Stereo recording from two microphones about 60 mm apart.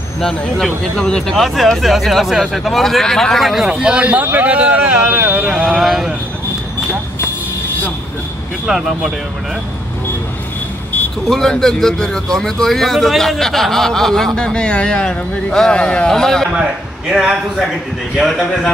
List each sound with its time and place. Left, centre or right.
0.2 s a man's voice: centre
1.3 s speech: centre
3.6 s speech: centre
4.0 s speech: right
5.1 s speech: right
5.5 s speech: centre
8.6 s speech: centre
11.2 s a man's voice: centre
16.5 s a man's voice: centre
18.1 s speech: centre